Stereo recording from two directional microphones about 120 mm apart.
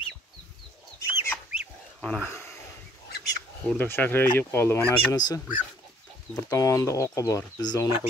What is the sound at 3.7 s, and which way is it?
Speech, 15° left (ahead or behind).